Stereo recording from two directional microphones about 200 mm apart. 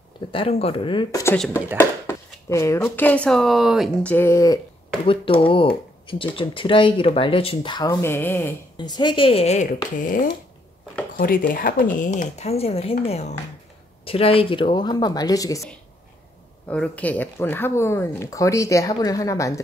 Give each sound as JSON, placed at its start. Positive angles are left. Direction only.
{"t": 0.3, "sound": "speech", "side_deg": 30}
{"t": 1.2, "sound": "speech", "side_deg": 10}
{"t": 5.0, "sound": "speech", "side_deg": 25}
{"t": 8.7, "sound": "speech", "side_deg": 20}
{"t": 16.6, "sound": "speech", "side_deg": 5}